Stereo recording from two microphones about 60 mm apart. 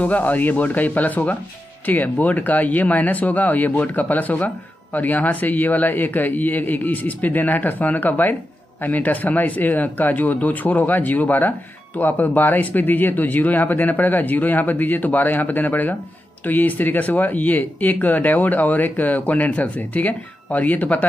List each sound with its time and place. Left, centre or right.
0.0 s speech: left